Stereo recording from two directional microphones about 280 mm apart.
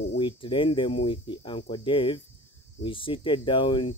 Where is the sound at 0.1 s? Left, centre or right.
Centre.